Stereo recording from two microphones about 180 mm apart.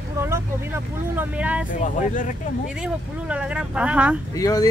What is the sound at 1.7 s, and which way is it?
Speech, 45° left (ahead or behind).